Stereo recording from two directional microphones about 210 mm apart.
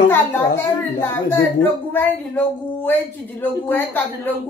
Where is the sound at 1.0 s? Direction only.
10° left (ahead or behind).